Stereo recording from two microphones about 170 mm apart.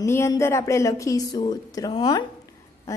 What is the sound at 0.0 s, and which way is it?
A woman's voice, 15° left (ahead or behind).